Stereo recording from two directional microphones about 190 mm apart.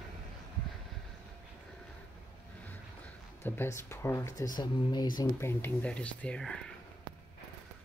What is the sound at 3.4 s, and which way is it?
Speech, 10° left (ahead or behind).